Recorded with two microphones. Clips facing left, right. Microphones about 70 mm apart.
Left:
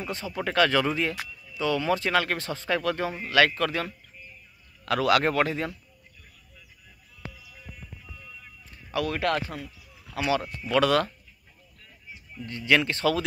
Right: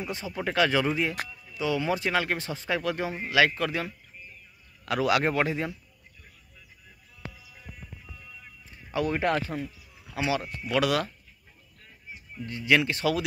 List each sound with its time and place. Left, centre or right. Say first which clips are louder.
0.0 s speech: left 1 dB; centre
8.9 s speech: even; right; by 11.1 s centre
12.4 s speech: even; centre